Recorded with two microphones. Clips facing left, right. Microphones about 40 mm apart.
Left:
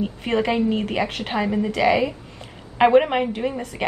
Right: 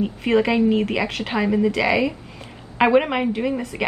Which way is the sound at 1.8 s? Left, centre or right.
Right.